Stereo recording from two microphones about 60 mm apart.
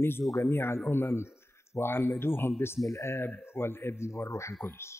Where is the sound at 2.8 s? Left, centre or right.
Left.